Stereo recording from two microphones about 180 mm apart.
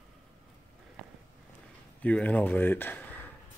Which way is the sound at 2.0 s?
10° left (ahead or behind).